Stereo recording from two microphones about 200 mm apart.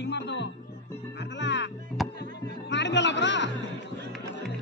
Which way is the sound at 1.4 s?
65° left (ahead or behind).